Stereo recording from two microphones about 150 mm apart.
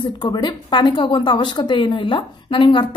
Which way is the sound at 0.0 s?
30° left (ahead or behind).